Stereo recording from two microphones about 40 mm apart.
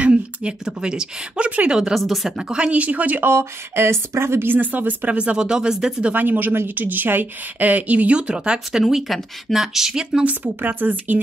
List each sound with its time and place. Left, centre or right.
0.0 s speech: right
1.4 s a woman's voice: right
1.7 s speech: centre
2.0 s speech: centre
2.3 s speech: right
3.3 s speech: right
4.6 s speech: right; by 5.9 s centre
6.1 s speech: right
8.8 s speech: centre
10.2 s speech: right